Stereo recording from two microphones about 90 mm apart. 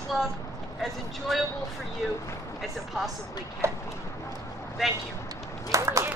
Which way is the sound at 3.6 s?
30° right (ahead or behind).